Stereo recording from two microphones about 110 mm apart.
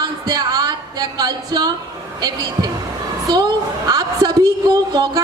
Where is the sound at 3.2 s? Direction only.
40° right (ahead or behind).